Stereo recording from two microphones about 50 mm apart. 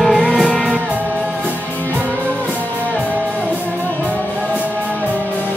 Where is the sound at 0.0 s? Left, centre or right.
Centre.